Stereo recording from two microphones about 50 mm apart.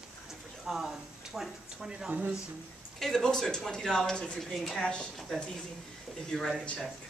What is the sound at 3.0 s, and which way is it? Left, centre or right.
Speech, centre.